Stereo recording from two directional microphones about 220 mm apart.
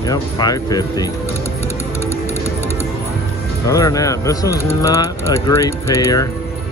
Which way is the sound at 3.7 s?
15° left (ahead or behind).